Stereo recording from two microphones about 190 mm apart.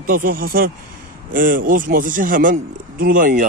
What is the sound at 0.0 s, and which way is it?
A man's voice, 45° right (ahead or behind).